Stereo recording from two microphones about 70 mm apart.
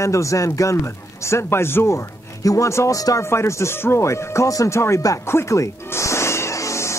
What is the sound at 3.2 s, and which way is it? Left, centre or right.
Music, left.